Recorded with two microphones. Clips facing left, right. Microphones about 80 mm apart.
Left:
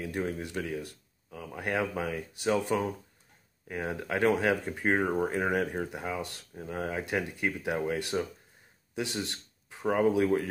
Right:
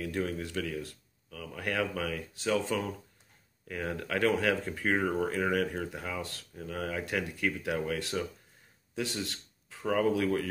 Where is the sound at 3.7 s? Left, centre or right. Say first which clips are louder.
Left 1 dB; left.